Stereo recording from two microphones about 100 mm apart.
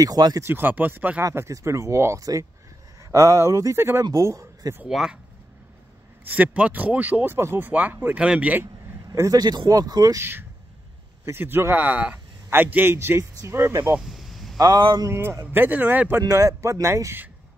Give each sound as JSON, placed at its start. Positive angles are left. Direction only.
{"t": 0.0, "sound": "speech", "side_deg": -40}
{"t": 0.4, "sound": "speech", "side_deg": -20}
{"t": 1.2, "sound": "speech", "side_deg": -30}
{"t": 4.0, "sound": "speech", "side_deg": -35}
{"t": 4.8, "sound": "speech", "side_deg": -5}
{"t": 6.2, "sound": "speech", "side_deg": -15}
{"t": 9.1, "sound": "speech", "side_deg": -35}
{"t": 10.1, "sound": "speech", "side_deg": -25}
{"t": 13.9, "sound": "a sound", "side_deg": 0}
{"t": 14.6, "sound": "speech", "side_deg": -45}
{"t": 15.0, "sound": "speech", "side_deg": -25}
{"t": 16.3, "sound": "speech", "side_deg": -35}